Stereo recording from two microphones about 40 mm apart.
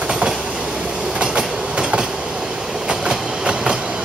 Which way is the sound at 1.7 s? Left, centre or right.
Right.